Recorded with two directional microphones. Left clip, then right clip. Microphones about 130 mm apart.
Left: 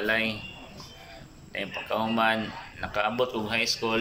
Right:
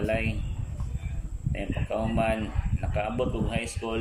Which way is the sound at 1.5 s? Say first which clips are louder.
Left 2 dB; 25° right (ahead or behind).